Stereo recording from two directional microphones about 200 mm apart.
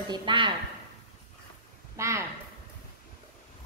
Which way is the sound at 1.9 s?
15° right (ahead or behind).